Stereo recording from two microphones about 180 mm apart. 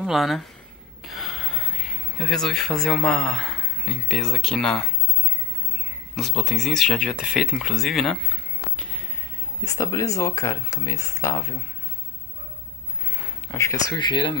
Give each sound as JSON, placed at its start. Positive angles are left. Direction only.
{"t": 0.0, "sound": "speech", "side_deg": 0}
{"t": 6.1, "sound": "speech", "side_deg": 0}
{"t": 9.7, "sound": "speech", "side_deg": 15}
{"t": 13.5, "sound": "speech", "side_deg": 15}